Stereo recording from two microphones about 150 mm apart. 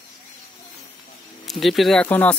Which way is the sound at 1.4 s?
Centre (ahead or behind).